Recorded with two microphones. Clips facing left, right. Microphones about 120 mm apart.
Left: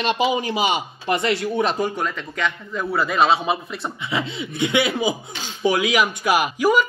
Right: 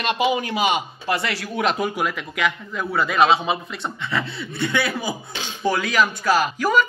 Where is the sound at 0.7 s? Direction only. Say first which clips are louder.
Even; 75° right (ahead or behind).